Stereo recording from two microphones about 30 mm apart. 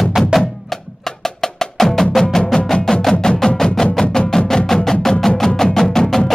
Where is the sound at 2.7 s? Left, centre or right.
Centre.